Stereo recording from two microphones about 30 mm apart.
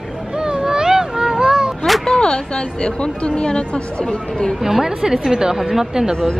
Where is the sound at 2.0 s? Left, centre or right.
Left.